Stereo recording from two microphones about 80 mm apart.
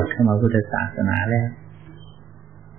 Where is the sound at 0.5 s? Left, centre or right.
Centre.